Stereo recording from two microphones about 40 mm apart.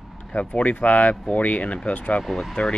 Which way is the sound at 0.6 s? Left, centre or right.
Left.